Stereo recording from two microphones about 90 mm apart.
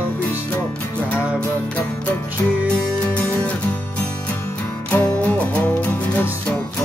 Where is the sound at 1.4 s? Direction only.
15° left (ahead or behind).